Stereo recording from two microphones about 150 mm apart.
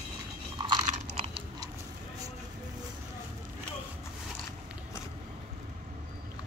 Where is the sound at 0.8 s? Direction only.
40° right (ahead or behind).